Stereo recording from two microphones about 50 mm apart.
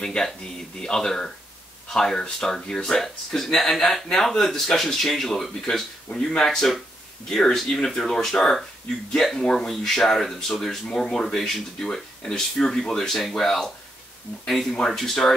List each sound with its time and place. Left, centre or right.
0.0 s speech: centre